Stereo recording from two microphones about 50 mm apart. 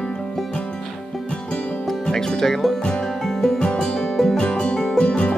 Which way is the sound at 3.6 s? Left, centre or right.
Centre.